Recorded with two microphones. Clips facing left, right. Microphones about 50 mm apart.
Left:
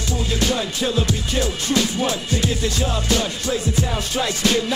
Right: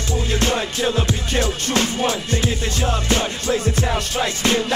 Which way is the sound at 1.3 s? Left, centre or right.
Right.